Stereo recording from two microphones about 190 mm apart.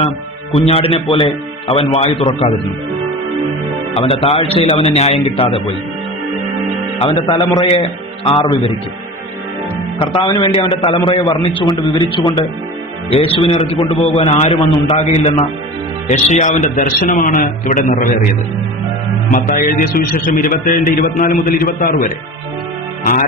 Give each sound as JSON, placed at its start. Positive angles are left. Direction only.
{"t": 0.0, "sound": "a man's voice", "side_deg": 30}
{"t": 3.9, "sound": "a man's voice", "side_deg": 30}
{"t": 7.0, "sound": "a man's voice", "side_deg": 25}
{"t": 9.9, "sound": "a man's voice", "side_deg": 25}
{"t": 19.3, "sound": "a man's voice", "side_deg": 45}